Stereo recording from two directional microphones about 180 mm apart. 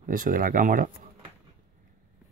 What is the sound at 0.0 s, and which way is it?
Speech, 50° right (ahead or behind).